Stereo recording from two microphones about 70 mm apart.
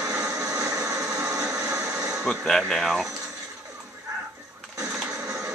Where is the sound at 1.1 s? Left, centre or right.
Right.